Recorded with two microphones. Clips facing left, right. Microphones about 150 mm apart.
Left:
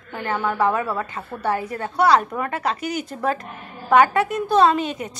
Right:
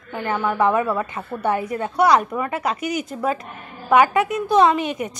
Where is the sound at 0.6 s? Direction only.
20° right (ahead or behind).